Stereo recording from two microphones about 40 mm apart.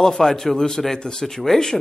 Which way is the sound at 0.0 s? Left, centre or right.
Centre.